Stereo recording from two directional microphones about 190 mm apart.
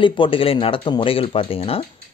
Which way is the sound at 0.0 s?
25° left (ahead or behind).